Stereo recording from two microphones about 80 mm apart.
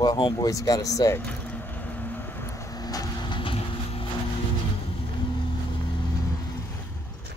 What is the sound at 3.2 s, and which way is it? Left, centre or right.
Vehicle, left.